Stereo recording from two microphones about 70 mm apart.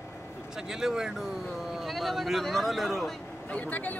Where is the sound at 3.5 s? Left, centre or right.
Left.